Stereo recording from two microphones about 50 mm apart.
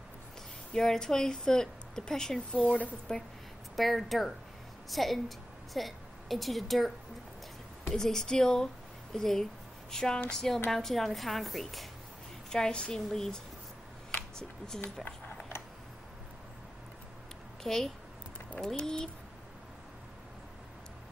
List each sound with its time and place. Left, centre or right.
0.7 s speech: centre
2.6 s speech: left
3.1 s speech: centre
3.7 s a woman's voice: centre
7.9 s a woman's voice: centre
12.4 s speech: centre
17.6 s speech: centre
18.8 s speech: centre